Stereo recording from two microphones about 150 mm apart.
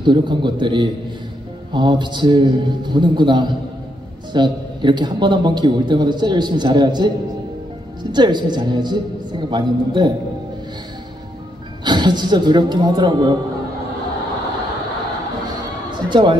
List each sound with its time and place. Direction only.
0.0 s a man's voice: 30° right (ahead or behind)
11.8 s a woman's voice: 30° right (ahead or behind)
15.9 s music: 30° right (ahead or behind)